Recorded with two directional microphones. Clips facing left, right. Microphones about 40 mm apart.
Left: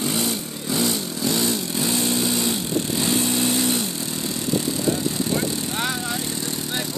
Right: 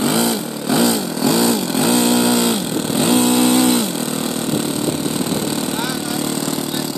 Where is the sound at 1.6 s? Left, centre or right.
Right.